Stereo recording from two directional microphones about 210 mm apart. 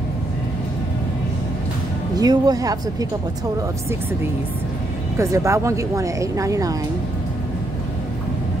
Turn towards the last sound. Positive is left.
turn(degrees=-15)  # may be behind; listen again after turning